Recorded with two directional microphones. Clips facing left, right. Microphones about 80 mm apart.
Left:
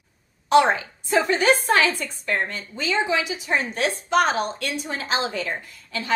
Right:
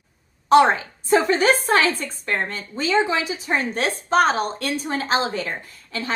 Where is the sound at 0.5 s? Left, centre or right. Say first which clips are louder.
Right 3 dB; right.